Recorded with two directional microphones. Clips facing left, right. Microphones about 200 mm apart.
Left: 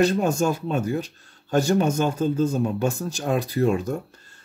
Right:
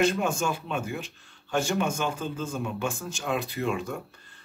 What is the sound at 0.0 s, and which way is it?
Speech, 40° left (ahead or behind).